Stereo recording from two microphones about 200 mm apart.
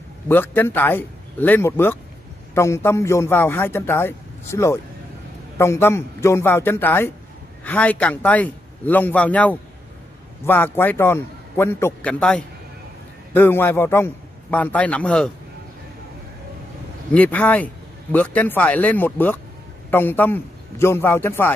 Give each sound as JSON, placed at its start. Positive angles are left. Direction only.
{"t": 0.3, "sound": "a man's voice", "side_deg": 10}
{"t": 17.1, "sound": "a man's voice", "side_deg": 10}